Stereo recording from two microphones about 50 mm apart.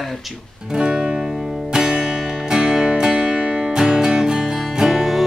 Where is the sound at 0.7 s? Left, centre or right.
Centre.